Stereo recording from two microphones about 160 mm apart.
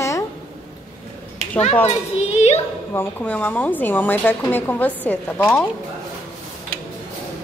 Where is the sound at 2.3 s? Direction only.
40° left (ahead or behind).